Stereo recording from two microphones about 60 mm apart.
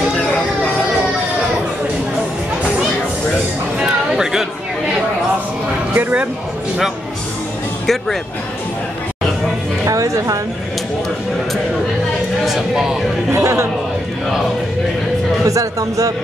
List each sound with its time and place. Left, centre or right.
3.8 s a sound: centre
5.9 s a sound: right
7.8 s speech: centre
9.8 s a woman's voice: right
12.4 s speech: centre
13.3 s speech: right
15.4 s speech: right